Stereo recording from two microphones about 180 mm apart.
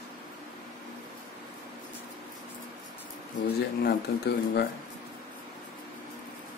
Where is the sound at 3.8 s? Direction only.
65° left (ahead or behind).